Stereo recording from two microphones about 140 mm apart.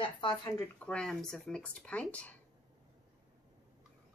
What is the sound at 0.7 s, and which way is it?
Speech, 10° left (ahead or behind).